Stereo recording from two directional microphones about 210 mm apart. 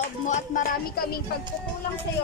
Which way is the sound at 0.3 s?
40° left (ahead or behind).